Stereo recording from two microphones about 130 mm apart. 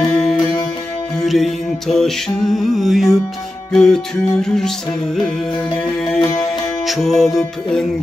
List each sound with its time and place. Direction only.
0.0 s music: centre (ahead or behind)